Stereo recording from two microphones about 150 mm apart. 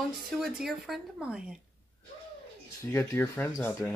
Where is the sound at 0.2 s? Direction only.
Centre (ahead or behind).